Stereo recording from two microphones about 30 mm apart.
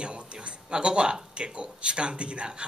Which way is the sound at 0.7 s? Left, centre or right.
Right.